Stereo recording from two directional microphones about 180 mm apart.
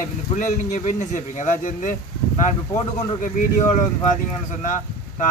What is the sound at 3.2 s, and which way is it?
Speech, 45° left (ahead or behind).